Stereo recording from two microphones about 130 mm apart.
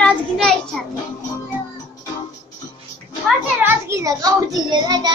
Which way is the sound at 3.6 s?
20° right (ahead or behind).